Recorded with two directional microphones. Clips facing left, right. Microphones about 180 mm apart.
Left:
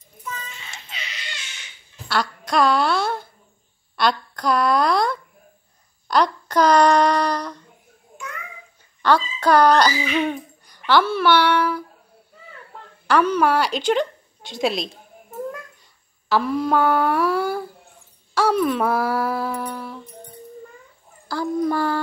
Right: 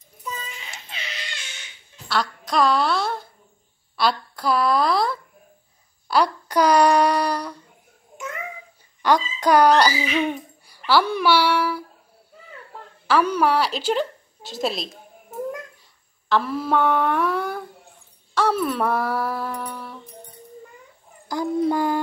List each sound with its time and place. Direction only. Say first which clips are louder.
0.2 s a sound: right 1 dB; 15° right (ahead or behind)
2.0 s a woman's voice: left 1 dB; centre (ahead or behind)
9.0 s a child's voice: left 1 dB; 15° right (ahead or behind)
13.0 s a woman's voice: left 1 dB; 5° right (ahead or behind)
16.3 s a sound: left 2 dB; centre (ahead or behind)
21.3 s speech: even; 20° right (ahead or behind)